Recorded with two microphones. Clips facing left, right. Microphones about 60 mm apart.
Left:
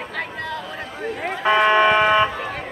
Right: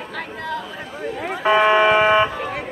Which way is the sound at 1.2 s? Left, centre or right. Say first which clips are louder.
Right 1 dB; centre.